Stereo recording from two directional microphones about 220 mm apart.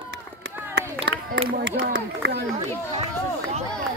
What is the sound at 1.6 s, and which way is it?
Speech, 55° right (ahead or behind).